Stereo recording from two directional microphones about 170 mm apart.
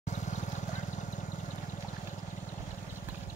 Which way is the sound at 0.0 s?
45° left (ahead or behind).